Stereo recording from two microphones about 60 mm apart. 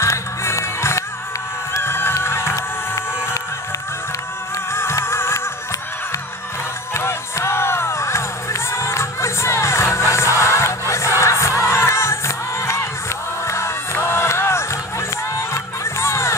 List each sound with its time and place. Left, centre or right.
0.0 s music: left
1.7 s run: left
4.7 s music: left
6.9 s music: left